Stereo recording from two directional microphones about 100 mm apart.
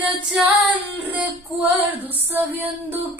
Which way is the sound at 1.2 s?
15° right (ahead or behind).